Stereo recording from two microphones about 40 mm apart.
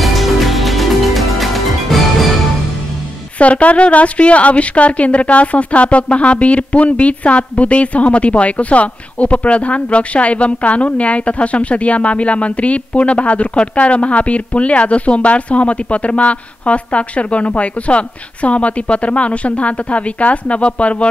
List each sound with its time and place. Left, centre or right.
0.0 s music: centre
3.3 s a woman's voice: left